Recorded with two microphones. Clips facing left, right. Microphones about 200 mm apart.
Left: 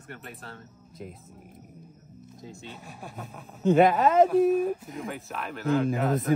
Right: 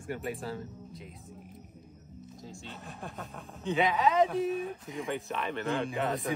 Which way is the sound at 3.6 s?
50° left (ahead or behind).